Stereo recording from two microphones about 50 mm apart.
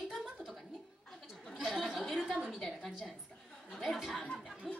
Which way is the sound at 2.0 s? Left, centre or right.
Centre.